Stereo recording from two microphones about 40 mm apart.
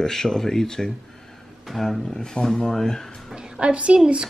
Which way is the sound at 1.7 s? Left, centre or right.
Centre.